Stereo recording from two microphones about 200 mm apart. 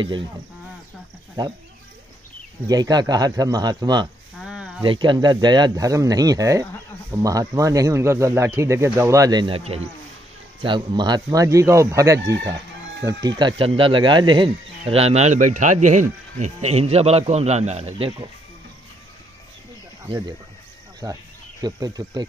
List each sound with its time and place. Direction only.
2.6 s speech: 20° right (ahead or behind)
4.4 s a sound: 5° right (ahead or behind)
4.8 s speech: 25° right (ahead or behind)
20.1 s speech: 20° right (ahead or behind)
21.6 s speech: 20° right (ahead or behind)